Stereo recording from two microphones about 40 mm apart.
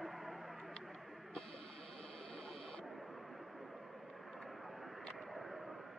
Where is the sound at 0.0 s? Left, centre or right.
Centre.